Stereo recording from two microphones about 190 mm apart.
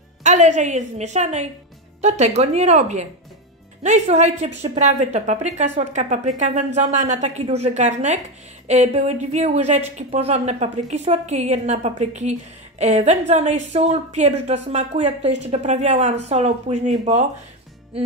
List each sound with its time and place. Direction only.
0.2 s speech: 40° right (ahead or behind)